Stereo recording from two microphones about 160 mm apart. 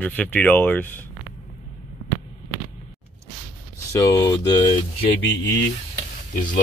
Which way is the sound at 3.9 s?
20° left (ahead or behind).